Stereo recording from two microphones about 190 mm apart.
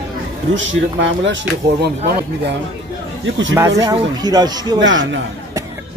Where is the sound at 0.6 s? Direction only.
75° right (ahead or behind).